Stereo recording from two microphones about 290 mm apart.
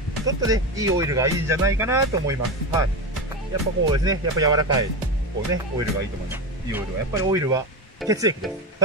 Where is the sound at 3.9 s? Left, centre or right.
Centre.